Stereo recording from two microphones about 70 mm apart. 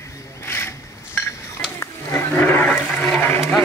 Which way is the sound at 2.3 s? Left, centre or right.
Left.